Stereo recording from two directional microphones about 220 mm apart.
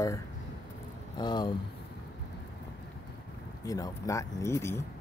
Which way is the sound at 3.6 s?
15° left (ahead or behind).